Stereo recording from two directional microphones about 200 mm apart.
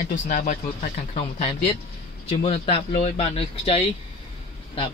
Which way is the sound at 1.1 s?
30° left (ahead or behind).